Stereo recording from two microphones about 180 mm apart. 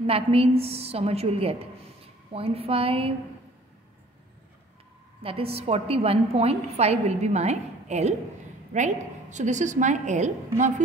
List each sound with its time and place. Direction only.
0.0 s a woman's voice: 35° right (ahead or behind)
5.2 s a woman's voice: 30° right (ahead or behind)